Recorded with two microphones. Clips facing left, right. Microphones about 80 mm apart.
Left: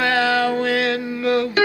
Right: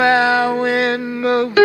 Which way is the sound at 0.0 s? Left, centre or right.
Right.